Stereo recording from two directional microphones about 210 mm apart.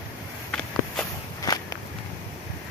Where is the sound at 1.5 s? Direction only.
15° left (ahead or behind).